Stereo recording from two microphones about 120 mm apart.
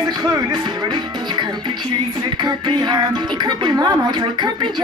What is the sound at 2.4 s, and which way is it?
Music, 40° right (ahead or behind).